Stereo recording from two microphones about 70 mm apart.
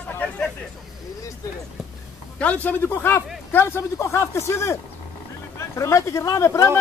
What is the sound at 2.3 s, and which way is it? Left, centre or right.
Speech, centre.